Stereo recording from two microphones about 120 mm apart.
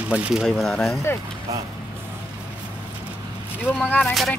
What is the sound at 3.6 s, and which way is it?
Speech, 15° left (ahead or behind).